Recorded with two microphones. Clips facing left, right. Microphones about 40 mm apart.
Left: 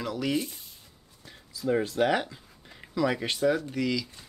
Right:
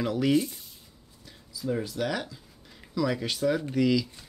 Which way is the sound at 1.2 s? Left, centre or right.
Left.